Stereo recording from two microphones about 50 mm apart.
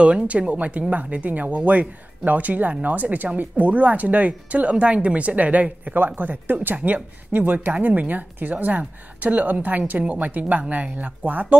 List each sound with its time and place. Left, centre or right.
0.0 s speech: right